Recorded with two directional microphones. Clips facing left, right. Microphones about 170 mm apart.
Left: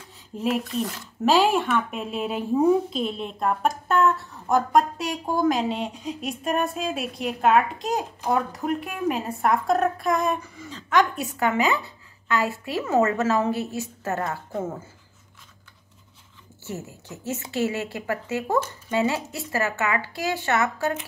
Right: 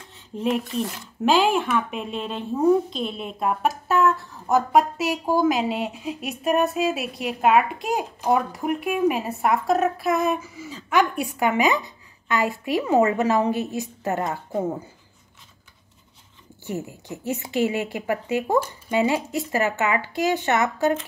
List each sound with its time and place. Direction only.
0.1 s speech: 5° left (ahead or behind); by 14.9 s 15° right (ahead or behind)
16.6 s a woman's voice: 15° right (ahead or behind)